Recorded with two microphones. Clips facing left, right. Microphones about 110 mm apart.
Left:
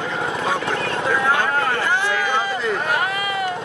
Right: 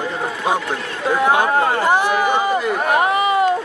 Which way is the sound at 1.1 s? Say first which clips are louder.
Right 5 dB; 20° right (ahead or behind).